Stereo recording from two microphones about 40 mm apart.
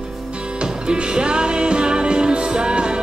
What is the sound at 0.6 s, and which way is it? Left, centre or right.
Music, right.